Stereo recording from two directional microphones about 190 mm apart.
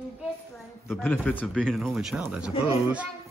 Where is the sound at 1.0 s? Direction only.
10° left (ahead or behind).